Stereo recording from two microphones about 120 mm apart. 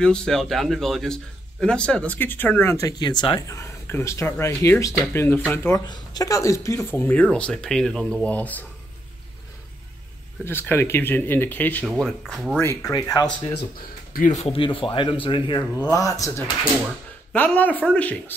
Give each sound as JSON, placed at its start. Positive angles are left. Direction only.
{"t": 0.0, "sound": "a man's voice", "side_deg": 5}
{"t": 3.0, "sound": "speech", "side_deg": 40}
{"t": 3.4, "sound": "a man's voice", "side_deg": 25}
{"t": 5.9, "sound": "a man's voice", "side_deg": 30}
{"t": 10.4, "sound": "a man's voice", "side_deg": 20}
{"t": 11.9, "sound": "speech", "side_deg": 0}
{"t": 12.5, "sound": "speech", "side_deg": 20}
{"t": 12.9, "sound": "speech", "side_deg": 30}
{"t": 14.2, "sound": "speech", "side_deg": 80}
{"t": 14.5, "sound": "speech", "side_deg": 45}
{"t": 15.8, "sound": "speech", "side_deg": 30}
{"t": 17.3, "sound": "a man's voice", "side_deg": 15}